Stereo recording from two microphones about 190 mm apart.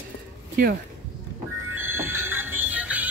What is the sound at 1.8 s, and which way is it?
Music, 10° right (ahead or behind).